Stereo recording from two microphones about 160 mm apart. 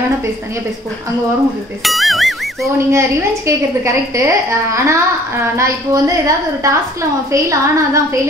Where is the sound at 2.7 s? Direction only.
15° right (ahead or behind).